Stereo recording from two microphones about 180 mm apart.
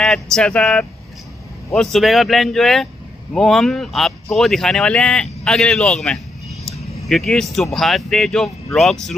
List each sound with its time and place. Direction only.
0.0 s speech: centre (ahead or behind)